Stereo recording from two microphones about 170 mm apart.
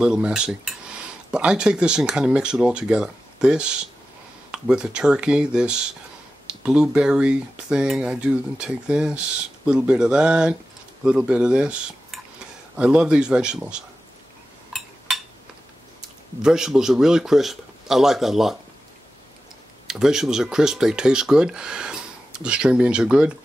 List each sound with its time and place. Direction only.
0.0 s speech: 5° right (ahead or behind)
14.7 s a sound: centre (ahead or behind)
16.4 s speech: 5° right (ahead or behind)
19.9 s speech: 5° right (ahead or behind)